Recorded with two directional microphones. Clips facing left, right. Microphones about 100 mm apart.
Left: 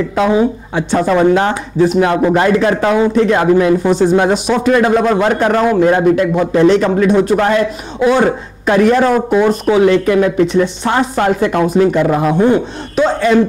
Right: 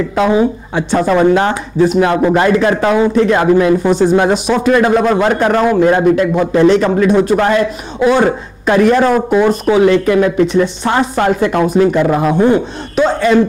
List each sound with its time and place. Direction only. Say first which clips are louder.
0.4 s a man's voice: even; 25° right (ahead or behind)
2.1 s a man's voice: even; 30° right (ahead or behind)
2.4 s a man's voice: right 1 dB; 20° right (ahead or behind)
9.5 s a man's voice: even; 15° right (ahead or behind)
12.9 s speech: right 1 dB; 15° right (ahead or behind)